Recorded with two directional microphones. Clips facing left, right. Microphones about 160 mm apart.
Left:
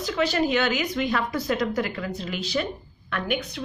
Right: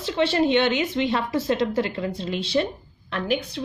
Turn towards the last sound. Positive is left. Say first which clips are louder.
# right 2 dB
turn(degrees=-30)  # may be behind; listen again after turning